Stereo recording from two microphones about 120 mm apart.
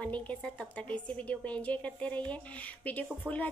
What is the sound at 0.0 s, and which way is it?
A woman's voice, 10° left (ahead or behind).